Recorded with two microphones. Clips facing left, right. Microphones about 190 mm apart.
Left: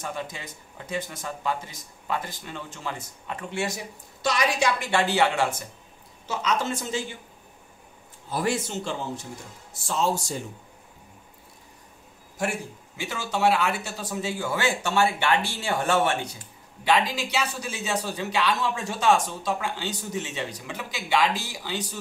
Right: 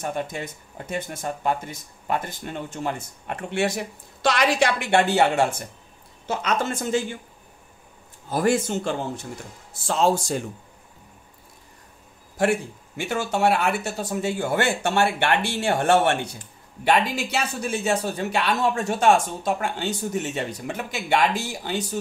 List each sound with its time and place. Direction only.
0.0 s speech: 55° right (ahead or behind)
8.3 s speech: 50° right (ahead or behind)
9.8 s speech: 90° right
12.4 s speech: 60° right (ahead or behind)